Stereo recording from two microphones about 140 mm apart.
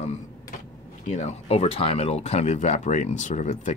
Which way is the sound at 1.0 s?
50° left (ahead or behind).